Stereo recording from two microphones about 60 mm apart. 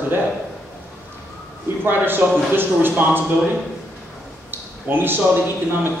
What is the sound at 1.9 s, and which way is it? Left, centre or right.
Speech, right.